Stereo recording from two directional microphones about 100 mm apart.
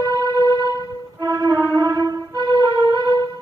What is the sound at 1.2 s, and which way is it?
Music, 40° right (ahead or behind).